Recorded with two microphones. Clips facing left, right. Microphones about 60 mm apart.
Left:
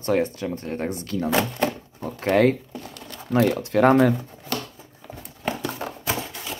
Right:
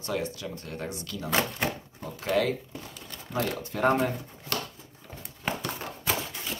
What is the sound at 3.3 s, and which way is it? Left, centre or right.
Speech, left.